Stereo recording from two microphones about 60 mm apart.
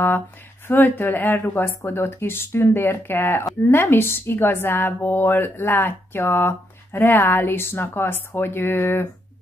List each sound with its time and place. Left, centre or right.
0.7 s a woman's voice: left